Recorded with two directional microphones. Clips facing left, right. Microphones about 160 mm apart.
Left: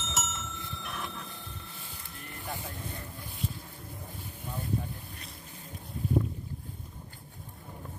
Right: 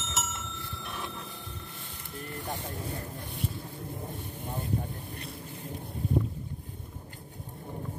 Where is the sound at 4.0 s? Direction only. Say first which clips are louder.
Right 6 dB; 25° right (ahead or behind).